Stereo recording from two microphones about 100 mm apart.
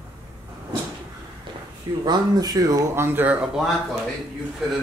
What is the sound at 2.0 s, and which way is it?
Speech, 40° right (ahead or behind).